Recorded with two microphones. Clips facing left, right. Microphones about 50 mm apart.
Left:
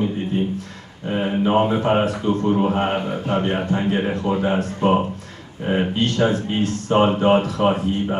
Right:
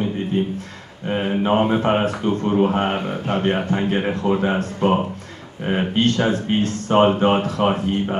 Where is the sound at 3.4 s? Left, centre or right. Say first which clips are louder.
Right 3 dB; right.